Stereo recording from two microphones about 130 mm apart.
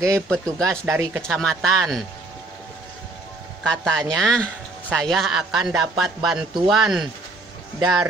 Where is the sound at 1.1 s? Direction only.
5° left (ahead or behind).